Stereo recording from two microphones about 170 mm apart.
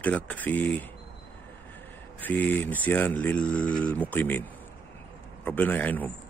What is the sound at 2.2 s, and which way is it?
Speech, 10° left (ahead or behind).